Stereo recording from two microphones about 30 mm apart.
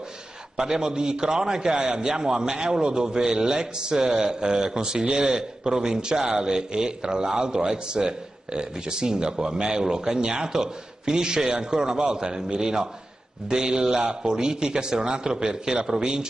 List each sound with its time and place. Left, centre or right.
0.6 s a man's voice: right